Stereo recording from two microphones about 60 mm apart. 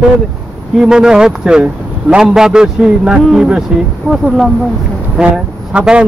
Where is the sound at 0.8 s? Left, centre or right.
Centre.